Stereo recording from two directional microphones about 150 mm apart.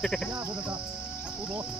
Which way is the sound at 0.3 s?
15° right (ahead or behind).